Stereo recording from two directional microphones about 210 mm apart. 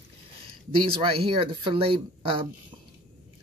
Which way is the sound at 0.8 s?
25° right (ahead or behind).